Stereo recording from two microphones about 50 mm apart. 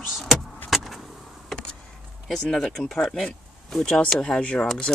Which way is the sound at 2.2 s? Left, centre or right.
Centre.